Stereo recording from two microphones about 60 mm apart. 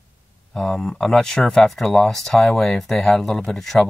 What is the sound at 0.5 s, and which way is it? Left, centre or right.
Speech, centre.